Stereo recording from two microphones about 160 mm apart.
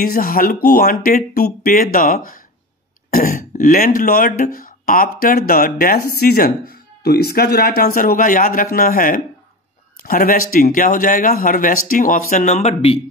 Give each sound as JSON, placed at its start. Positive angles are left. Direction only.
{"t": 0.0, "sound": "speech", "side_deg": 65}